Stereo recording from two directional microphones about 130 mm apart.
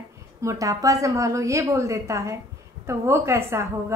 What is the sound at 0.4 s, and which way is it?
A woman's voice, 25° right (ahead or behind).